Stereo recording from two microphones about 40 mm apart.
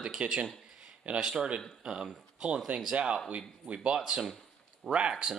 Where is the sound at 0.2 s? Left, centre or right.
Right.